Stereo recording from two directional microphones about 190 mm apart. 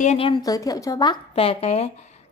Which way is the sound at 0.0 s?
35° left (ahead or behind).